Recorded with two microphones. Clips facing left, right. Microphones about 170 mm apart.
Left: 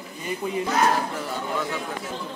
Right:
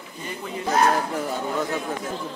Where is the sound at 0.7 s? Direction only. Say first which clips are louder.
Right 3 dB; 45° right (ahead or behind).